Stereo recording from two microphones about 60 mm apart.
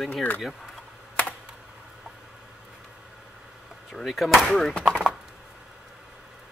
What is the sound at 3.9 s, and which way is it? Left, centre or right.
Speech, centre.